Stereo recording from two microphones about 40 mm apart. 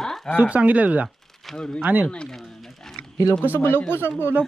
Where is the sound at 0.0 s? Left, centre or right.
Centre.